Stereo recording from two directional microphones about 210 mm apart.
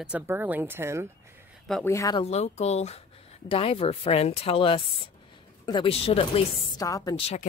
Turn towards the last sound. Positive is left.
turn(degrees=15)  # may be behind; listen again after turning